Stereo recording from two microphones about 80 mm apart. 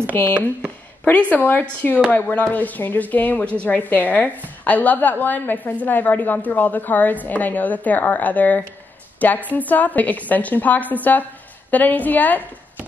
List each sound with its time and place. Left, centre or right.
1.3 s a woman's voice: left